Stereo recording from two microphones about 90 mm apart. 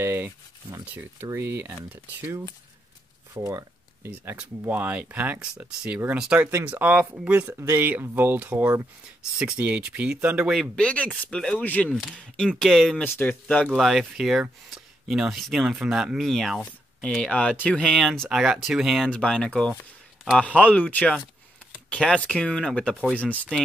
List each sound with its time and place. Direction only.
0.0 s a sound: 25° right (ahead or behind)
0.9 s speech: 25° right (ahead or behind)
3.3 s a sound: 35° right (ahead or behind)
4.1 s speech: 30° right (ahead or behind); by 10.7 s 5° right (ahead or behind)
10.8 s speech: 15° left (ahead or behind)
11.9 s speech: centre (ahead or behind)
12.2 s speech: 10° left (ahead or behind)
12.9 s speech: 20° left (ahead or behind)
13.7 s speech: 5° right (ahead or behind)
18.3 s speech: 5° right (ahead or behind)
19.0 s speech: 10° left (ahead or behind)